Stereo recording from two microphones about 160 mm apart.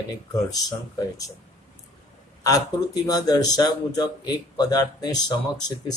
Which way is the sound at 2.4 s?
20° left (ahead or behind).